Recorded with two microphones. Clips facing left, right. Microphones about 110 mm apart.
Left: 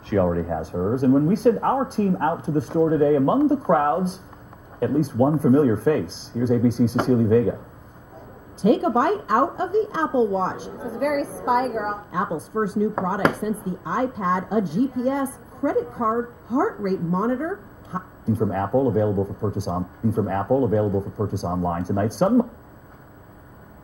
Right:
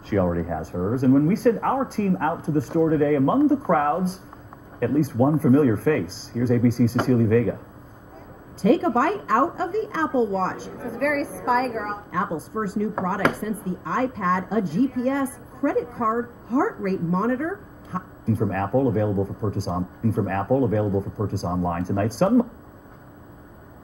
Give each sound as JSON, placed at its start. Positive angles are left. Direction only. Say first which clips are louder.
{"t": 0.3, "sound": "speech", "louder": "left 2 dB", "side_deg": 15}
{"t": 8.5, "sound": "speech", "louder": "even", "side_deg": 15}